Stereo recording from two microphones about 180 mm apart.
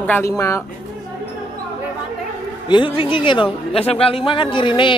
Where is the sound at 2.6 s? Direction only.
25° left (ahead or behind).